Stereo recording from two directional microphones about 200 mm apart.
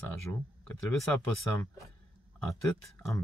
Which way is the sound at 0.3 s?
10° left (ahead or behind).